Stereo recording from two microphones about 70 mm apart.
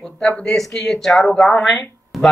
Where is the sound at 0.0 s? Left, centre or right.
Centre.